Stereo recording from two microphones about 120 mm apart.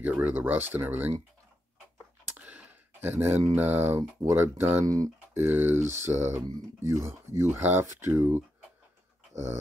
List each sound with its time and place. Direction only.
0.0 s speech: 15° right (ahead or behind)
2.3 s a sound: 10° right (ahead or behind)
3.5 s speech: 15° right (ahead or behind)